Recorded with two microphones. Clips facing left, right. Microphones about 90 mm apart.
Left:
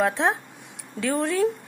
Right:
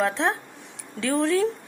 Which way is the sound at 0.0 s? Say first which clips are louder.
Left 1 dB; 15° left (ahead or behind).